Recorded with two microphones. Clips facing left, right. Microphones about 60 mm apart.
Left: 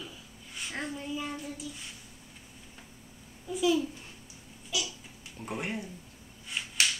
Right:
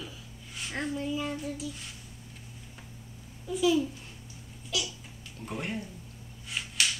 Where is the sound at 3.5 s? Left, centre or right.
Centre.